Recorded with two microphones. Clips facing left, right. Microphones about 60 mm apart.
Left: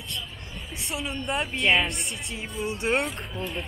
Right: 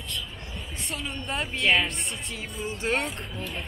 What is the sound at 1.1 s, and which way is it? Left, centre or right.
A man's voice, centre.